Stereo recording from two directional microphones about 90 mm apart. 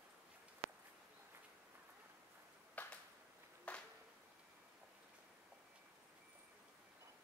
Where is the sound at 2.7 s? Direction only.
15° left (ahead or behind).